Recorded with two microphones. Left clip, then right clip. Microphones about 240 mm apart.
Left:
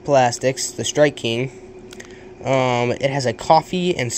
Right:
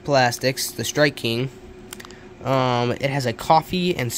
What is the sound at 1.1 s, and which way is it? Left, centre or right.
Speech, right.